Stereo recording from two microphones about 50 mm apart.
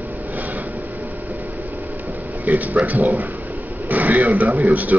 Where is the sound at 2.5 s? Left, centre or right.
Right.